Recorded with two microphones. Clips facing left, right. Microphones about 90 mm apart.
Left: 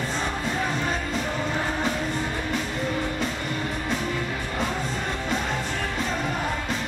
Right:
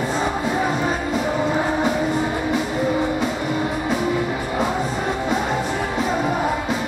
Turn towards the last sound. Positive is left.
turn(degrees=-20)  # may be behind; listen again after turning